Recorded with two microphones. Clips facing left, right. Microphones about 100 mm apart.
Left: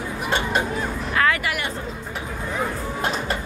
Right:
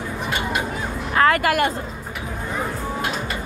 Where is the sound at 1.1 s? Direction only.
40° right (ahead or behind).